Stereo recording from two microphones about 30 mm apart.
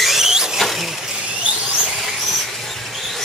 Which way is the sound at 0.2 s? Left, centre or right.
Centre.